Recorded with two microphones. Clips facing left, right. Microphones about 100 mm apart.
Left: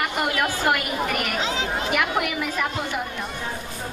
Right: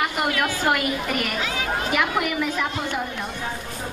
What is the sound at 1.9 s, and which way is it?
Speech, centre (ahead or behind).